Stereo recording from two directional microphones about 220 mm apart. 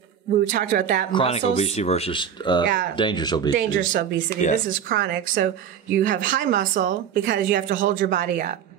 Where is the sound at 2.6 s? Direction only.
40° right (ahead or behind).